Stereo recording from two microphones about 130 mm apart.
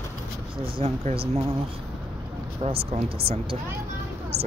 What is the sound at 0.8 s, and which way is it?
Speech, 50° right (ahead or behind).